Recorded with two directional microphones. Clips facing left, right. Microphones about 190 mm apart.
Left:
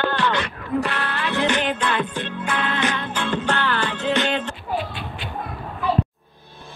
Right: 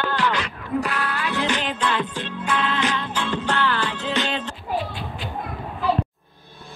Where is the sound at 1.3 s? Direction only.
55° left (ahead or behind).